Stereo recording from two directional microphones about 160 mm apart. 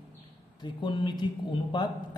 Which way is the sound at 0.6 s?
30° left (ahead or behind).